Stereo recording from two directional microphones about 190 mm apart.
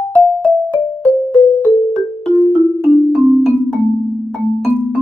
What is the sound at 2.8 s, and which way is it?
Music, centre (ahead or behind).